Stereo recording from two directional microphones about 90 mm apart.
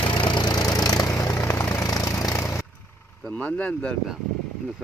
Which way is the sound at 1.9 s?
45° left (ahead or behind).